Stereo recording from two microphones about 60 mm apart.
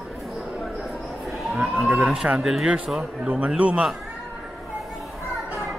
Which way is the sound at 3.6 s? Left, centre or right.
Right.